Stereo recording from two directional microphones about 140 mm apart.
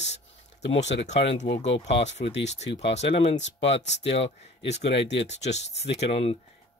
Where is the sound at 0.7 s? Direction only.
55° left (ahead or behind).